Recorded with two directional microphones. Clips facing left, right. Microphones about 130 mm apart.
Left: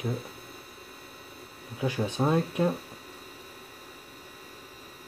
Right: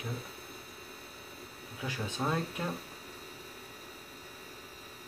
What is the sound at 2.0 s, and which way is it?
Speech, 25° left (ahead or behind).